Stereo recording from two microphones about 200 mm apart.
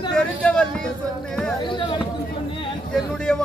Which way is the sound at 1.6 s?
25° left (ahead or behind).